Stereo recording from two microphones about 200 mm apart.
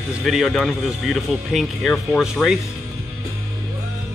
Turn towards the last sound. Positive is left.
turn(degrees=0)  # may be behind; listen again after turning